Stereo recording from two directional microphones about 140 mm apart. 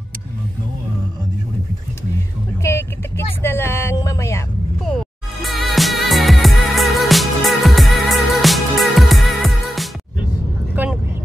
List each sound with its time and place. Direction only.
2.6 s vehicle: 20° left (ahead or behind)
3.4 s a sound: 15° left (ahead or behind)
4.8 s music: centre (ahead or behind)
10.8 s vehicle: 10° right (ahead or behind)